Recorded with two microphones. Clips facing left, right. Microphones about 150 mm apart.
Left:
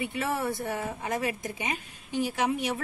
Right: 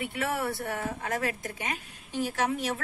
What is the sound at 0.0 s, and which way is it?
A woman's voice, 15° left (ahead or behind).